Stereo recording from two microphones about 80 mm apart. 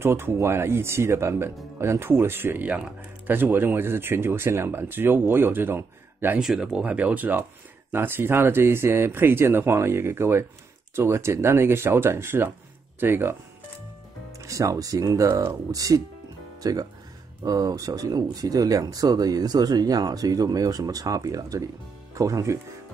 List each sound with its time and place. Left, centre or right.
0.0 s speech: right
6.4 s speech: centre; by 13.4 s right
14.4 s speech: right